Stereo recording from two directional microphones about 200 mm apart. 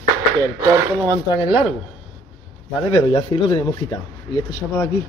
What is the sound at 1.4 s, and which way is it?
Speech, 25° left (ahead or behind).